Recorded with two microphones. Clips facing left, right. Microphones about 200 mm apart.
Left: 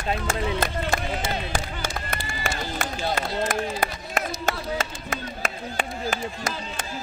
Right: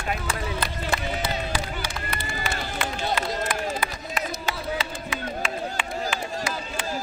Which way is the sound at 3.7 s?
45° left (ahead or behind).